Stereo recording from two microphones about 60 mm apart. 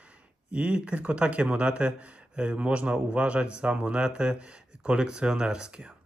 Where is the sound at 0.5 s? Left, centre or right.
Centre.